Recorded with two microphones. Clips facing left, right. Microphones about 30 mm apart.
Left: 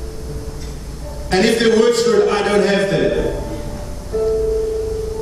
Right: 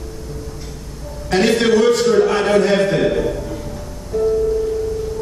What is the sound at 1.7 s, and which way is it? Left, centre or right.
Speech, left.